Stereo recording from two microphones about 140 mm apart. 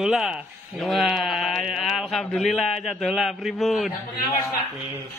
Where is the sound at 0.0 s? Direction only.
5° right (ahead or behind).